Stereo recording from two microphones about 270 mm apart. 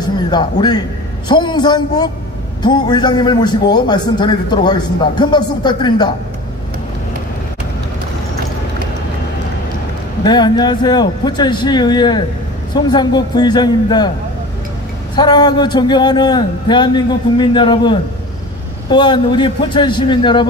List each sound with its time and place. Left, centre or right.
0.0 s a man's voice: centre
10.2 s a man's voice: centre
15.1 s a man's voice: centre